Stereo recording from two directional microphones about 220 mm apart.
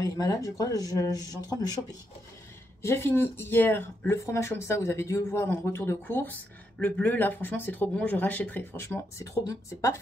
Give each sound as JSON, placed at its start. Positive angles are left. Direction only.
{"t": 0.0, "sound": "speech", "side_deg": 15}
{"t": 2.8, "sound": "speech", "side_deg": 10}